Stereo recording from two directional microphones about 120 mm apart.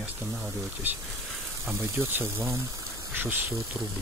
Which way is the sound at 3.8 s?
Centre (ahead or behind).